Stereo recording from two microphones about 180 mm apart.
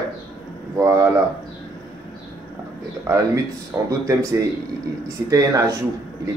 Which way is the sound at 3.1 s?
15° right (ahead or behind).